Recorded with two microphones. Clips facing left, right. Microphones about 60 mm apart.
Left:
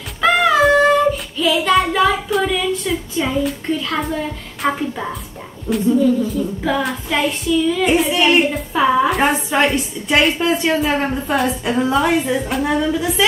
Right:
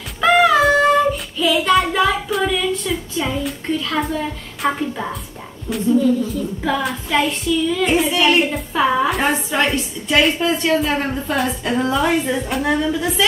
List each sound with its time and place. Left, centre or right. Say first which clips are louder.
0.2 s child singing: even; centre
4.6 s a woman's voice: left 1 dB; centre
5.7 s child singing: left 1 dB; centre
9.5 s a woman's voice: left 3 dB; left
10.2 s a woman's voice: left 1 dB; centre
11.3 s child singing: left 2 dB; centre